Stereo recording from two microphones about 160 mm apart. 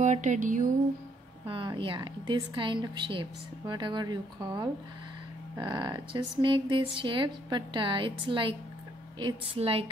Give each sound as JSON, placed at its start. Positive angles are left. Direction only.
{"t": 0.0, "sound": "music", "side_deg": -50}
{"t": 1.5, "sound": "a woman's voice", "side_deg": -30}